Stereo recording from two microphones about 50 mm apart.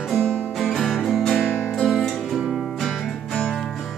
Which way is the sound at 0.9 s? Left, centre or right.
Centre.